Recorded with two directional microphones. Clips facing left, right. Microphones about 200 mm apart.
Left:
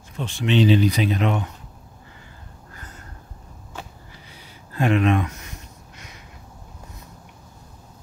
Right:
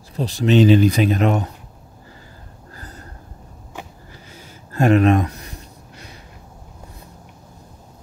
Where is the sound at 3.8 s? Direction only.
15° right (ahead or behind).